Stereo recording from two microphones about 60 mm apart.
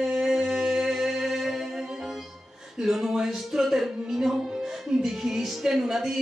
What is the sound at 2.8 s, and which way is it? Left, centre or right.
Speech, centre.